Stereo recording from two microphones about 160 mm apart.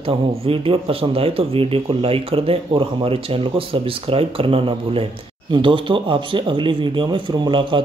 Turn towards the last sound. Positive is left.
turn(degrees=-30)  # may be behind; listen again after turning